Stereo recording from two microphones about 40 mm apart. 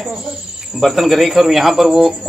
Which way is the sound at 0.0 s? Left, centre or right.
Centre.